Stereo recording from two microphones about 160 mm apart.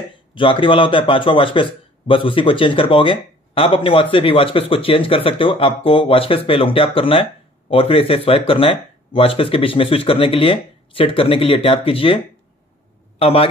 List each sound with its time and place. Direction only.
0.3 s a man's voice: 30° left (ahead or behind)
13.2 s a man's voice: 35° left (ahead or behind)